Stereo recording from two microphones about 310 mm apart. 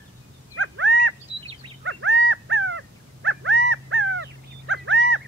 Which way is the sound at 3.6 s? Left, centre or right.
Right.